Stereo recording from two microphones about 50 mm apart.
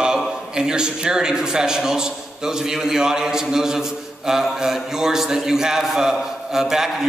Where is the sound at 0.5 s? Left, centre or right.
Centre.